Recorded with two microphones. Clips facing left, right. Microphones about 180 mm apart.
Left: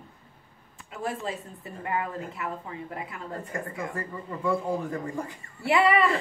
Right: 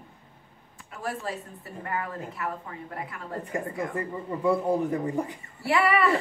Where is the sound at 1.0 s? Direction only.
20° left (ahead or behind).